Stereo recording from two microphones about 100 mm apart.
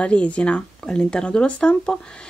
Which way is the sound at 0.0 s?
10° left (ahead or behind).